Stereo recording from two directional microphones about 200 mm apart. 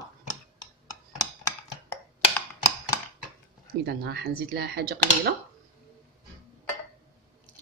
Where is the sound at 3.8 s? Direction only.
50° right (ahead or behind).